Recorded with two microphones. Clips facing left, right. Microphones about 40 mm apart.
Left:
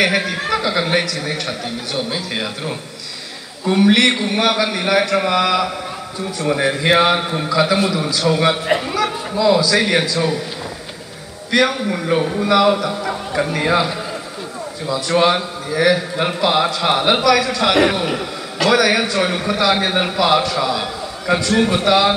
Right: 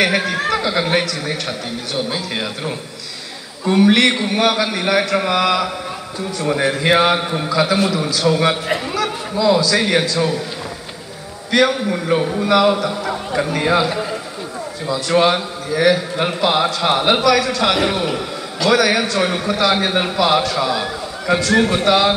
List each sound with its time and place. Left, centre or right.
0.0 s a man's voice: centre
8.6 s speech: centre
8.9 s a man's voice: centre
11.5 s a man's voice: centre
14.9 s a man's voice: centre
16.6 s a man's voice: centre